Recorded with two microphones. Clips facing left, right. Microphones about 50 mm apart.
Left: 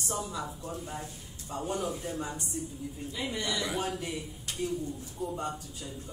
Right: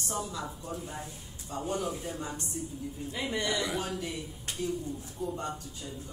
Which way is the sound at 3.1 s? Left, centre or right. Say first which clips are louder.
Right 2 dB; right.